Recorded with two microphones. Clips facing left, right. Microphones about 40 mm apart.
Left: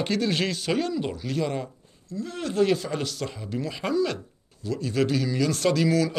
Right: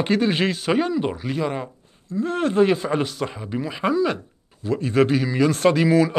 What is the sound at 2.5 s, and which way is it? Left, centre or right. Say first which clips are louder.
Speech: right 3 dB; right.